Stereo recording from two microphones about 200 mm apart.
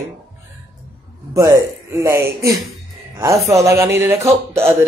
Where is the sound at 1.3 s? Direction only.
15° right (ahead or behind).